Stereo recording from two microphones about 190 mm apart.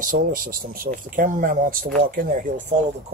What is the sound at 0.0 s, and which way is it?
Speech, 45° right (ahead or behind).